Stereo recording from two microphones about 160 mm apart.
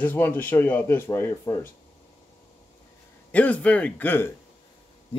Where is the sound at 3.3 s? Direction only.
10° left (ahead or behind).